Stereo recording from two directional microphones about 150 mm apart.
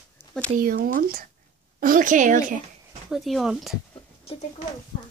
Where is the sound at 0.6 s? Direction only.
75° right (ahead or behind); by 2.5 s 60° right (ahead or behind).